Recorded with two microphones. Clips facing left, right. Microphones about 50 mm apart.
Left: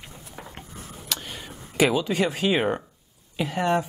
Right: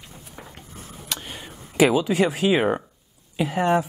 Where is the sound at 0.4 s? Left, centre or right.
Centre.